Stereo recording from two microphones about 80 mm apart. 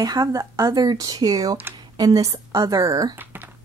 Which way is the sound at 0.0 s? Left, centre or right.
Right.